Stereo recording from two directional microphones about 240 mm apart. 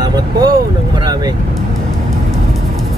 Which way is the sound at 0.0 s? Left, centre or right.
Centre.